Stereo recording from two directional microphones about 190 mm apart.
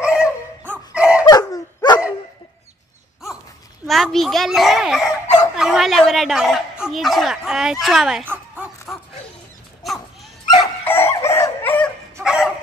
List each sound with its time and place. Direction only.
0.0 s dog: 5° right (ahead or behind)
1.2 s dog: 20° left (ahead or behind)
3.8 s a child's voice: centre (ahead or behind)
10.9 s dog: 15° left (ahead or behind)